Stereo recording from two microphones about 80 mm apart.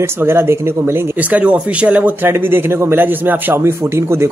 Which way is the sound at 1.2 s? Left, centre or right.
Centre.